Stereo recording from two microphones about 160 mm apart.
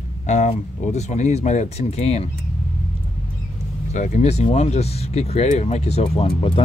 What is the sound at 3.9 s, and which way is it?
Speech, 45° left (ahead or behind).